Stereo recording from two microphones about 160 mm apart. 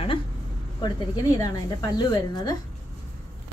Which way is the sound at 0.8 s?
25° left (ahead or behind).